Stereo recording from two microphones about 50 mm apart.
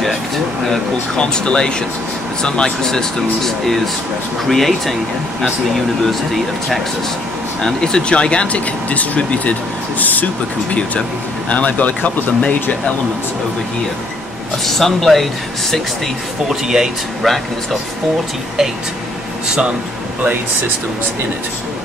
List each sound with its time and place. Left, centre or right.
0.7 s speech: centre
6.0 s speech: centre
7.6 s speech: centre; by 12.5 s left
14.6 s speech: centre
16.4 s speech: centre